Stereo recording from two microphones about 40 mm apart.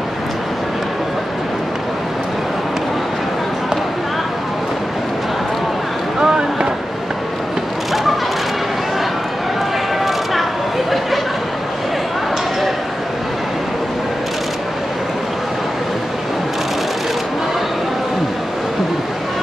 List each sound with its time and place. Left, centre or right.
6.1 s boat: right